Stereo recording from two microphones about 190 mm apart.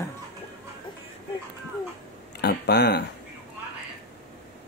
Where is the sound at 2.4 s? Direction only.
60° left (ahead or behind).